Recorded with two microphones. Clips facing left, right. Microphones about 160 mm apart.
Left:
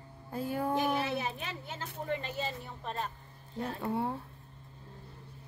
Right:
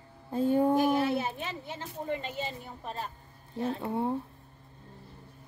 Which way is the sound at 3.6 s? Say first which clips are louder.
Right 3 dB; 20° right (ahead or behind).